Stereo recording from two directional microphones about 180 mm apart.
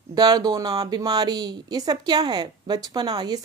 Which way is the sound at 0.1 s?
20° right (ahead or behind).